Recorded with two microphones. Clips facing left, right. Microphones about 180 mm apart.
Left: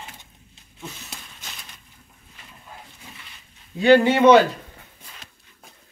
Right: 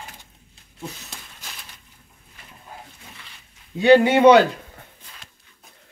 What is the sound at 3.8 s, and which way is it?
Speech, 15° right (ahead or behind).